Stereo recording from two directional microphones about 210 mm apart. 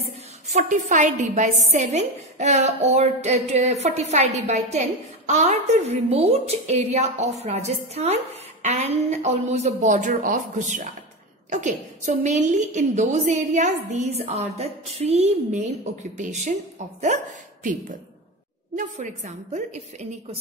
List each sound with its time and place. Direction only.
0.5 s a woman's voice: 35° right (ahead or behind)
18.8 s a woman's voice: 35° right (ahead or behind)